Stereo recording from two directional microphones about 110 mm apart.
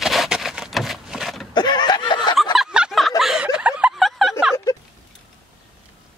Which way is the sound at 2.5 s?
5° right (ahead or behind).